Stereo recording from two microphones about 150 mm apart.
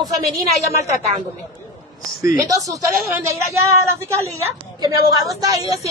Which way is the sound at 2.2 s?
20° right (ahead or behind).